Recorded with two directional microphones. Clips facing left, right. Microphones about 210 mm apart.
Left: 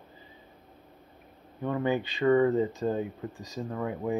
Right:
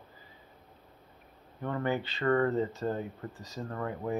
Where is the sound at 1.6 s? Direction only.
15° left (ahead or behind).